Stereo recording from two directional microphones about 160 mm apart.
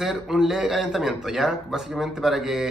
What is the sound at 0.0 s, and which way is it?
Speech, centre (ahead or behind).